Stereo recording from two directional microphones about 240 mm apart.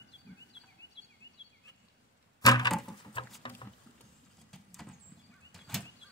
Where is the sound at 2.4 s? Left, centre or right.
Centre.